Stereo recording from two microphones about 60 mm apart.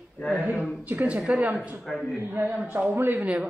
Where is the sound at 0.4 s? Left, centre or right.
Right.